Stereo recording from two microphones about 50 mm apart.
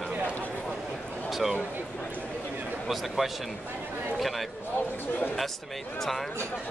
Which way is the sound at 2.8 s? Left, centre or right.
Centre.